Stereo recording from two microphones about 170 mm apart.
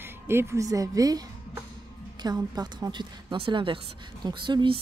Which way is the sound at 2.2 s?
25° right (ahead or behind).